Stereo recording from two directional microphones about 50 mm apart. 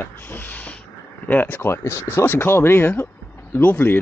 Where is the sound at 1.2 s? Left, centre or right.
Left.